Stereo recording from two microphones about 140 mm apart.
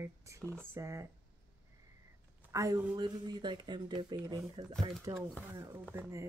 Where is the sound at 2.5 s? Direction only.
20° right (ahead or behind).